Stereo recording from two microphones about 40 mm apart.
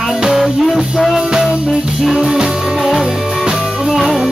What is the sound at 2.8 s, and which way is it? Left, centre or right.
Music, centre.